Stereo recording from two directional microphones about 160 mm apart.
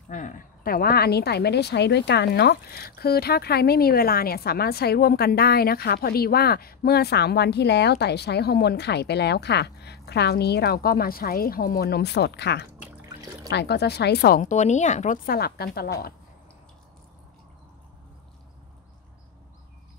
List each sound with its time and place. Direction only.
0.1 s a woman's voice: 55° left (ahead or behind); by 14.4 s 85° left
14.4 s speech: 50° left (ahead or behind)
15.2 s a woman's voice: 70° left (ahead or behind)